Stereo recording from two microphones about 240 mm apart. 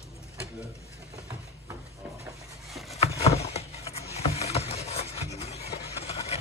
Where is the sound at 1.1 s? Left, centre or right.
Centre.